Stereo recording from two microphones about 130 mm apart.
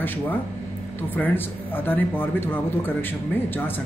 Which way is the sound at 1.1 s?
15° left (ahead or behind).